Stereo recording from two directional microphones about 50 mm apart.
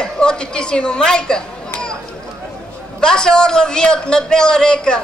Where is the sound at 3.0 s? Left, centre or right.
Centre.